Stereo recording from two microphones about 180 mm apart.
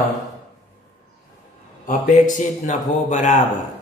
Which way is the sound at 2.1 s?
45° left (ahead or behind).